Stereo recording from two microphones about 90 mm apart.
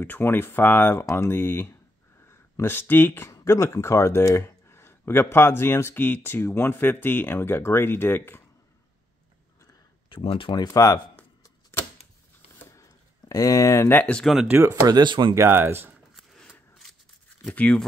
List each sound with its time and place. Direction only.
0.0 s speech: 25° left (ahead or behind)
10.0 s speech: 70° left (ahead or behind)
10.5 s speech: 45° left (ahead or behind)
13.3 s speech: 40° left (ahead or behind)
13.8 s speech: 25° left (ahead or behind)
14.5 s speech: 25° right (ahead or behind)
14.9 s speech: 55° right (ahead or behind)
15.3 s speech: 25° right (ahead or behind)
16.2 s a sound: centre (ahead or behind)
17.5 s speech: 15° left (ahead or behind)